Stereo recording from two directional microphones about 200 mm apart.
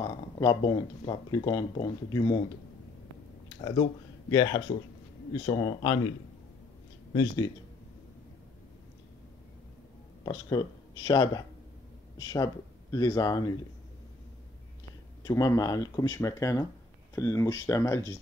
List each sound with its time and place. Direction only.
0.0 s speech: 20° left (ahead or behind)
4.3 s speech: 20° left (ahead or behind)
7.2 s speech: 20° left (ahead or behind)
10.2 s speech: 20° left (ahead or behind)
15.2 s speech: 15° left (ahead or behind)